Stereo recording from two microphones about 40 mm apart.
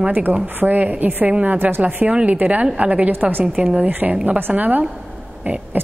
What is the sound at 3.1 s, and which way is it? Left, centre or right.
A woman's voice, right.